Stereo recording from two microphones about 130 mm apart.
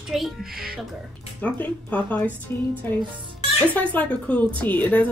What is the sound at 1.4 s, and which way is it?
A woman's voice, 10° left (ahead or behind).